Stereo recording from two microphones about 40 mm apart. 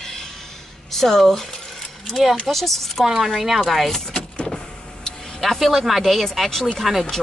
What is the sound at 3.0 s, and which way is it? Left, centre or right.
Speech, centre.